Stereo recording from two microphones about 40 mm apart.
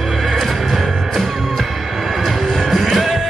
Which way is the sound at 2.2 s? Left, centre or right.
Centre.